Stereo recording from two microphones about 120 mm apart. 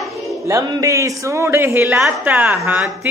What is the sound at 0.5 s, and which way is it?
A man's voice, 25° right (ahead or behind).